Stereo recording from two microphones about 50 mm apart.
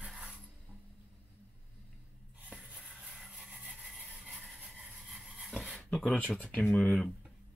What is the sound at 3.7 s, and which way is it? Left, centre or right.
Sawing, centre.